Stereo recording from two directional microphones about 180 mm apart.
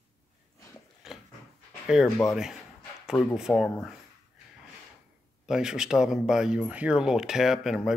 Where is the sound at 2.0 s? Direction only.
15° left (ahead or behind).